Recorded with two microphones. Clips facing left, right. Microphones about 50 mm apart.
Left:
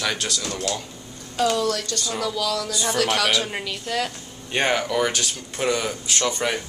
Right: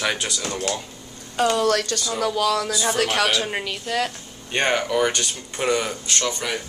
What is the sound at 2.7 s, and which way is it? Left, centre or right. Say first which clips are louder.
A woman's voice: right 1 dB; centre.